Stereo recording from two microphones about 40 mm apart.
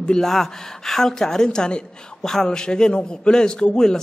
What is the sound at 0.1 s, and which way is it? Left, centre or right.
A woman's voice, centre.